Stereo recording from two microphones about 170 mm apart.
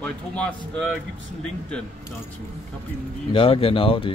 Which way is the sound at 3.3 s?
35° left (ahead or behind).